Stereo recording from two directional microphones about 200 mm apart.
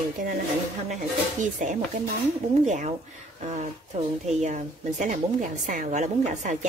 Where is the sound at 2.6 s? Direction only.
35° right (ahead or behind).